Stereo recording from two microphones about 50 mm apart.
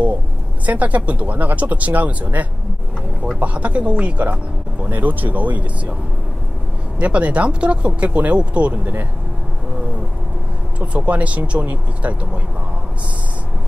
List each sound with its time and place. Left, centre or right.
0.7 s speech: right
7.0 s speech: right
10.9 s speech: right